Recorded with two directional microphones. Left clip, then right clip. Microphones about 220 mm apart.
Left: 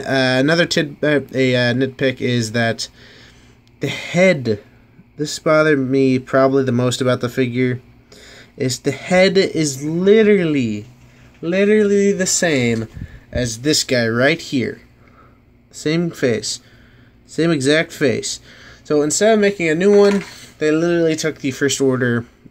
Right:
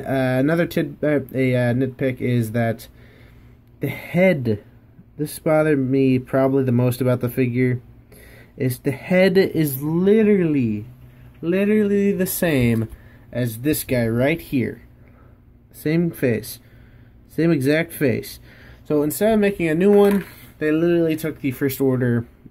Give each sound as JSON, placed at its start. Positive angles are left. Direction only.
{"t": 0.0, "sound": "speech", "side_deg": 10}
{"t": 13.3, "sound": "speech", "side_deg": 10}
{"t": 15.8, "sound": "speech", "side_deg": 0}